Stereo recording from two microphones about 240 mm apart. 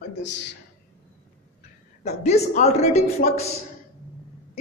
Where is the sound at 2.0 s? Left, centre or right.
Left.